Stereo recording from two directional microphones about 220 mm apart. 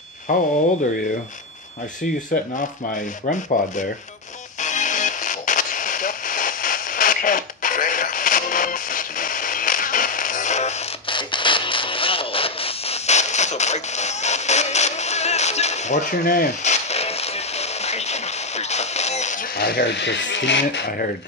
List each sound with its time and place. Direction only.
0.3 s speech: 35° left (ahead or behind)
2.5 s speech: 35° left (ahead or behind)
4.6 s music: 35° left (ahead or behind); by 21.1 s 55° left (ahead or behind)